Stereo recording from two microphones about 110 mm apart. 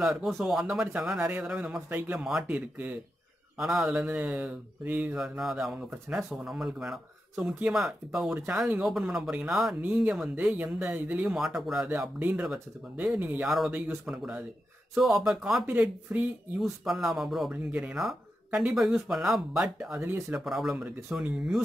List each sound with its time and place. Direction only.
0.0 s speech: centre (ahead or behind)
5.2 s speech: 5° right (ahead or behind)
9.8 s speech: 15° right (ahead or behind)
10.4 s speech: 15° right (ahead or behind)
11.3 s speech: centre (ahead or behind)
12.2 s speech: 15° right (ahead or behind)
15.6 s speech: 15° right (ahead or behind)
16.8 s speech: centre (ahead or behind)
17.6 s speech: 15° right (ahead or behind)
20.0 s speech: 20° right (ahead or behind)
20.3 s speech: centre (ahead or behind)